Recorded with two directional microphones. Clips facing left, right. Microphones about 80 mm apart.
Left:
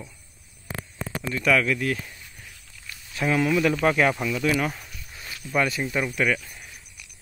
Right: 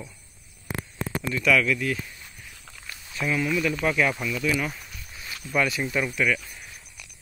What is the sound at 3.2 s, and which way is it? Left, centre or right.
Speech, left.